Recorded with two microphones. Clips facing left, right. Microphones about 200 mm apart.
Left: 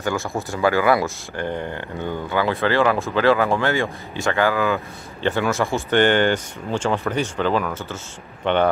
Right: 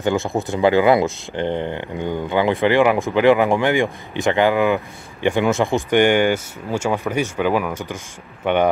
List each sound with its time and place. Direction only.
0.0 s speech: 20° right (ahead or behind)